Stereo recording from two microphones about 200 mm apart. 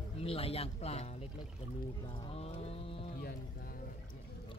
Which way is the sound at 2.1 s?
25° left (ahead or behind).